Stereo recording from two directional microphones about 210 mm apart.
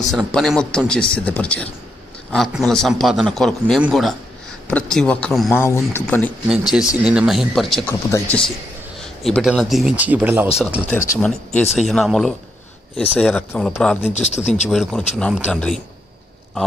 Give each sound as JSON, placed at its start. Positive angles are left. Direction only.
{"t": 0.1, "sound": "a man's voice", "side_deg": 0}
{"t": 6.5, "sound": "a man's voice", "side_deg": -5}
{"t": 14.1, "sound": "speech", "side_deg": 35}
{"t": 14.7, "sound": "a man's voice", "side_deg": 0}